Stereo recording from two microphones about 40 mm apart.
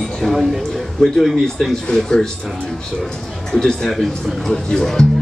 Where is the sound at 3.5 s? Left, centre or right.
Centre.